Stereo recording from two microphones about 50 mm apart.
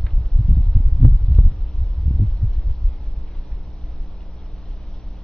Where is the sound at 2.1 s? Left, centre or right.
Centre.